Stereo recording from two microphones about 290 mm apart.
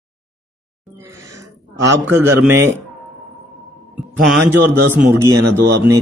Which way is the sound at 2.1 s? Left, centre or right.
Centre.